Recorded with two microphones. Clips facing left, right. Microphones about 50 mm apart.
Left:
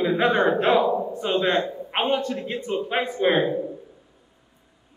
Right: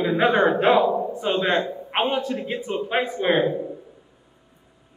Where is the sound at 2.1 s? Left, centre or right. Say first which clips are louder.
Even; centre.